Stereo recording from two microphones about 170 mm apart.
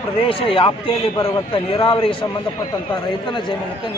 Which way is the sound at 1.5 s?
30° left (ahead or behind).